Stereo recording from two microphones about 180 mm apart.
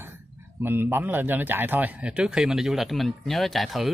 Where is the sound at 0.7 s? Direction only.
10° right (ahead or behind).